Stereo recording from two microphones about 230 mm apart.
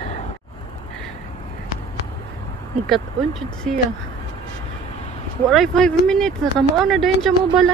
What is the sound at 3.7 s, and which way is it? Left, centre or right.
Speech, centre.